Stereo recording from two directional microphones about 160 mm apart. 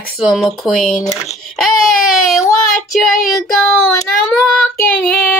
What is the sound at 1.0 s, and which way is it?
Speech, 45° left (ahead or behind).